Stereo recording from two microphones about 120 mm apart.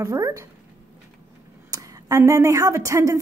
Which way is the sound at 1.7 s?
30° right (ahead or behind).